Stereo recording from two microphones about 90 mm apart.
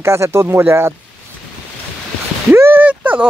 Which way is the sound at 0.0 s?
30° right (ahead or behind).